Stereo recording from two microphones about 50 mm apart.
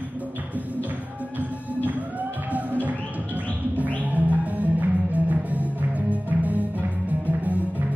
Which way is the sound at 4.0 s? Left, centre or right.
Right.